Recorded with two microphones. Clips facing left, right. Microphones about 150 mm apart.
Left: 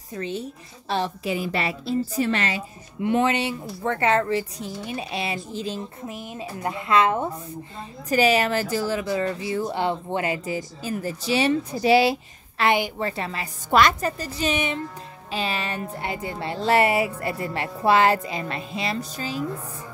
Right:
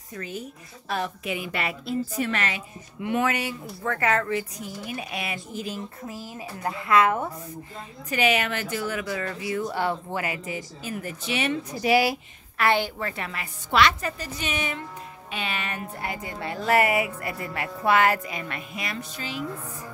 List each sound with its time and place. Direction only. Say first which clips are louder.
0.1 s a woman's voice: left 5 dB; 25° left (ahead or behind)
8.1 s speech: left 5 dB; 35° left (ahead or behind)
13.7 s a woman's voice: left 3 dB; 45° left (ahead or behind)